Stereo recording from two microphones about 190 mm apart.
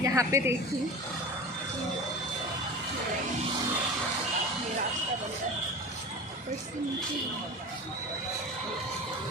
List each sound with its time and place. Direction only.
0.0 s a woman's voice: 15° right (ahead or behind)